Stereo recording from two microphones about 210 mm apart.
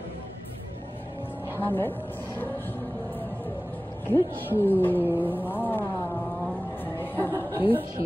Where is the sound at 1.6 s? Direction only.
10° left (ahead or behind).